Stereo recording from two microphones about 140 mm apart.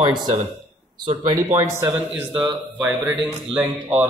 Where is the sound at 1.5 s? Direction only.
20° right (ahead or behind).